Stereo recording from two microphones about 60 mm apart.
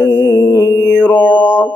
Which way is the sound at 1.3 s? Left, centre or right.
Right.